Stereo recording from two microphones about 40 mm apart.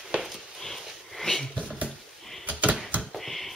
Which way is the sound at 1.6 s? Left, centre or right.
Right.